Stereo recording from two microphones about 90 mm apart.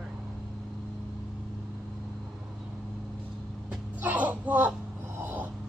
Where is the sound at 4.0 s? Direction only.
20° right (ahead or behind).